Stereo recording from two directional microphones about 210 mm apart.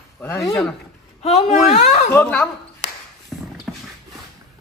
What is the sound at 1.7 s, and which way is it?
Speech, 30° left (ahead or behind).